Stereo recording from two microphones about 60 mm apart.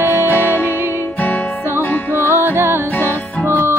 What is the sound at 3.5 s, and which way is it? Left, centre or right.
Music, right.